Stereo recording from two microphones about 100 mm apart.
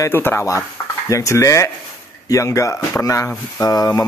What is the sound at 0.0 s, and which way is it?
Speech, 25° left (ahead or behind).